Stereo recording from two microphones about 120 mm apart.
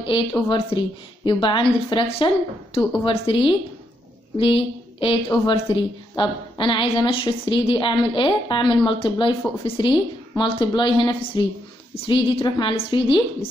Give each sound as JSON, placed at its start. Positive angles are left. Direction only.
{"t": 0.0, "sound": "a woman's voice", "side_deg": 45}